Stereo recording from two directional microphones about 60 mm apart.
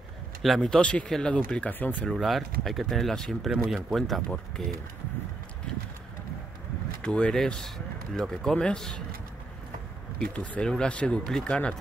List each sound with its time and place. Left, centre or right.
0.6 s a man's voice: centre
2.1 s a man's voice: centre
7.0 s a man's voice: centre
10.2 s a man's voice: left